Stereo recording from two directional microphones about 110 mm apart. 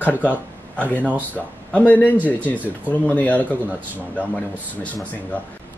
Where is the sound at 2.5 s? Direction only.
15° right (ahead or behind).